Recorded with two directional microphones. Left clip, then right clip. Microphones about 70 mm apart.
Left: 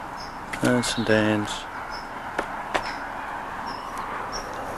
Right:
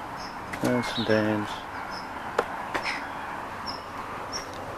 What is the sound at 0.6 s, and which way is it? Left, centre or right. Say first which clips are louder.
Speech: left 4 dB; left.